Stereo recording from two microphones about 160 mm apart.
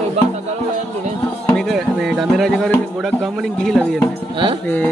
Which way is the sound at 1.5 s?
Centre (ahead or behind).